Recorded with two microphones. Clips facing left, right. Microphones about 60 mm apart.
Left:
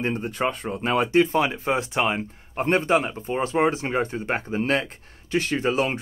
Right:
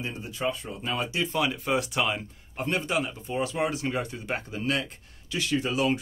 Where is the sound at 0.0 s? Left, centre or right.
Left.